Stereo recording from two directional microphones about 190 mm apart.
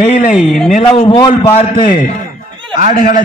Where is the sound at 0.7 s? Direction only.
30° left (ahead or behind).